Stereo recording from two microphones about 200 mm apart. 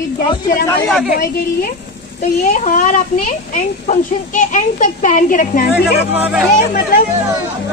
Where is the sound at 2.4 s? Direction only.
40° left (ahead or behind).